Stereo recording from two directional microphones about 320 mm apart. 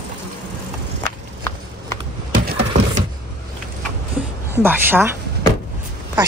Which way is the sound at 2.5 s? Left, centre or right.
Right.